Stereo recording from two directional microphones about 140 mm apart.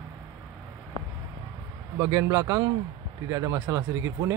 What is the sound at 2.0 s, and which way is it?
Speech, 20° right (ahead or behind).